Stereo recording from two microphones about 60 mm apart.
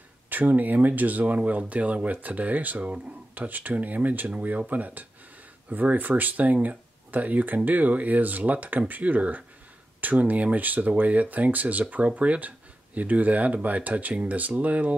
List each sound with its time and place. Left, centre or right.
0.3 s speech: right